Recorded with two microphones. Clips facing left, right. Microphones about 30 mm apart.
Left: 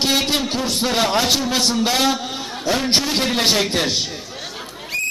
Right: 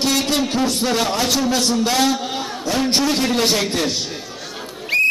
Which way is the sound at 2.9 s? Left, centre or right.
Left.